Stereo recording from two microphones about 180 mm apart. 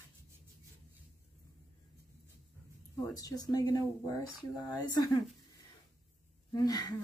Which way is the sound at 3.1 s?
20° left (ahead or behind).